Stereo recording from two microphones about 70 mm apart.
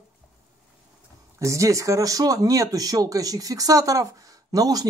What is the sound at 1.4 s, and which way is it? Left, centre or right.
Speech, right.